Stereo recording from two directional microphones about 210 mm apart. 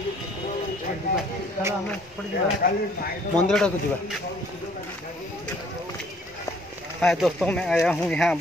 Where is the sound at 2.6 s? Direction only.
40° left (ahead or behind).